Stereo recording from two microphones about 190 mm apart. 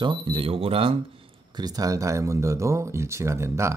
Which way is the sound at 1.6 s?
20° right (ahead or behind).